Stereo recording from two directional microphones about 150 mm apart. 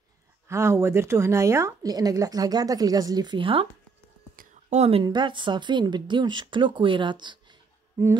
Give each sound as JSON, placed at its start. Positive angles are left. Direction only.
{"t": 0.5, "sound": "a woman's voice", "side_deg": -20}
{"t": 4.6, "sound": "a woman's voice", "side_deg": -45}
{"t": 5.0, "sound": "speech", "side_deg": -30}